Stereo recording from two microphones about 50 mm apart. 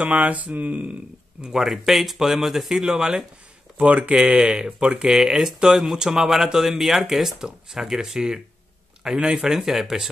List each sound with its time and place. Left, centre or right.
0.0 s speech: right
1.4 s speech: centre
3.7 s speech: right; by 10.0 s centre